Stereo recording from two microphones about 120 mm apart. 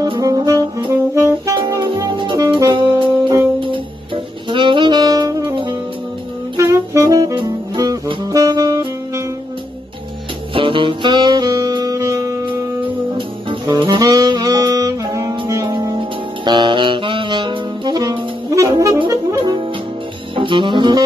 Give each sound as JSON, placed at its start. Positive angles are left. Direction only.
{"t": 0.0, "sound": "brass instrument", "side_deg": -30}
{"t": 0.9, "sound": "saxophone", "side_deg": -25}
{"t": 2.6, "sound": "saxophone", "side_deg": -40}
{"t": 7.4, "sound": "music", "side_deg": -30}
{"t": 8.1, "sound": "saxophone", "side_deg": -30}
{"t": 10.5, "sound": "saxophone", "side_deg": -45}
{"t": 12.4, "sound": "saxophone", "side_deg": -45}
{"t": 16.4, "sound": "saxophone", "side_deg": -40}
{"t": 20.3, "sound": "saxophone", "side_deg": -45}